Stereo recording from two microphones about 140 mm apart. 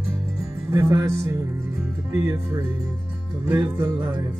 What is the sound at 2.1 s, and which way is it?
Speech, 20° right (ahead or behind).